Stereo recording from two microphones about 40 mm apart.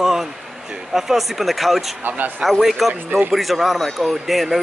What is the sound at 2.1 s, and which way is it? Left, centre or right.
Speech, right.